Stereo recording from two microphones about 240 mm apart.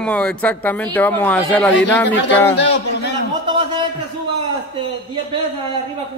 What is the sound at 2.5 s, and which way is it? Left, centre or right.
Speech, left.